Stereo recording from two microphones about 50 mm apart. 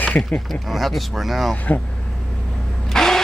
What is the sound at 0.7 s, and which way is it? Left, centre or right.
Speech, centre.